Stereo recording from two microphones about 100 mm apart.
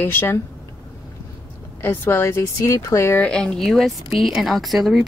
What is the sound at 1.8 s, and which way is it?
Speech, 25° left (ahead or behind).